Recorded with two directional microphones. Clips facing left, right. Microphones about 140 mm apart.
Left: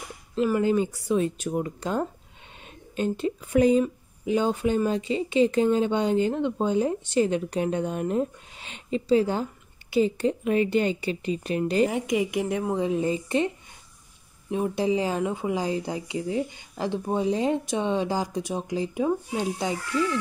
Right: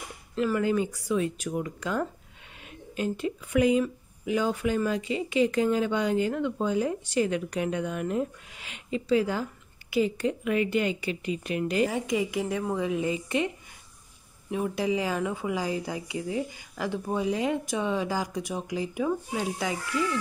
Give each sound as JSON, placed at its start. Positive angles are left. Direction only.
{"t": 0.4, "sound": "speech", "side_deg": 20}
{"t": 11.9, "sound": "a woman's voice", "side_deg": 20}
{"t": 12.8, "sound": "a woman's voice", "side_deg": 35}
{"t": 14.5, "sound": "speech", "side_deg": 25}